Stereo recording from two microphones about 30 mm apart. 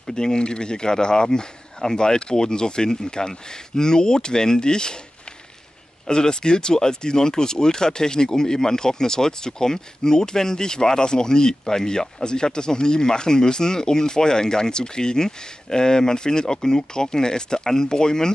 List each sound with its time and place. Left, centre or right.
0.0 s speech: left
6.0 s speech: left